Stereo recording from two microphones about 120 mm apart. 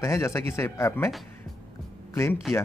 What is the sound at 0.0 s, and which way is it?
Speech, 25° left (ahead or behind).